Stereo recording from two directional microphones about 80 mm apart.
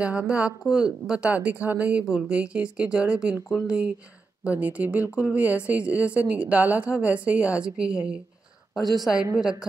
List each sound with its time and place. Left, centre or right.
0.0 s a woman's voice: centre
3.4 s speech: left
4.5 s a woman's voice: centre